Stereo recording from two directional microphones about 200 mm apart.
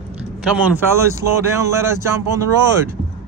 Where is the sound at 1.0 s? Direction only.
15° right (ahead or behind).